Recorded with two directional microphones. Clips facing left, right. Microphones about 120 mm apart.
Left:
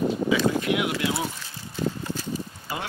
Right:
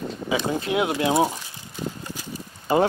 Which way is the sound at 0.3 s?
25° right (ahead or behind).